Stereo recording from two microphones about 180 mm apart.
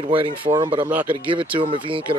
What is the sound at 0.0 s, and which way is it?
Speech, 30° right (ahead or behind).